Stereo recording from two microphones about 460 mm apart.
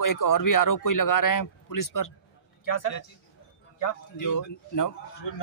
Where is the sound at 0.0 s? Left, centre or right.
Left.